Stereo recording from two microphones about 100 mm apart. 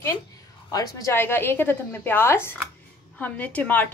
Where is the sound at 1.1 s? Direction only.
25° left (ahead or behind).